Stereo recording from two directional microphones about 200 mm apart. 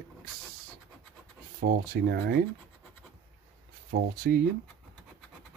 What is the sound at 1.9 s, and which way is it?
Speech, 50° right (ahead or behind).